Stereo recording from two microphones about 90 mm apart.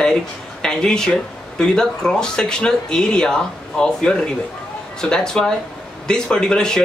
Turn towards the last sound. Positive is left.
turn(degrees=10)  # may be behind; listen again after turning